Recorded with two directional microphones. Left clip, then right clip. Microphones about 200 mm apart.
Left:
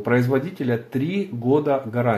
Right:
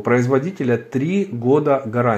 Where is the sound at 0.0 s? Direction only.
30° right (ahead or behind).